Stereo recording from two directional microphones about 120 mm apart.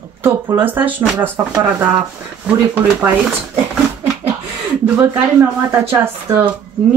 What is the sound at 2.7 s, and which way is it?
Speech, 15° right (ahead or behind).